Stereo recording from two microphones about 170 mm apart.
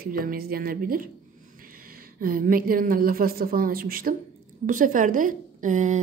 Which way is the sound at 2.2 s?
60° right (ahead or behind).